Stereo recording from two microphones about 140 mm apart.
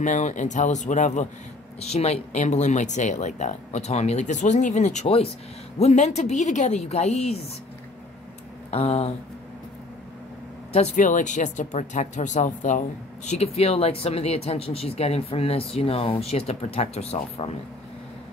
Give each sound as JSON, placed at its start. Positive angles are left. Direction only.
{"t": 0.0, "sound": "a woman's voice", "side_deg": 60}
{"t": 8.6, "sound": "speech", "side_deg": 50}
{"t": 10.7, "sound": "a woman's voice", "side_deg": 55}